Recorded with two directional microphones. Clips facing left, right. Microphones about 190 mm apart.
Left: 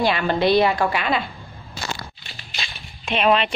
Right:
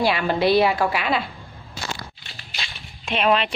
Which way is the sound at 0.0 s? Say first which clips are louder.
Left 1 dB; 5° right (ahead or behind).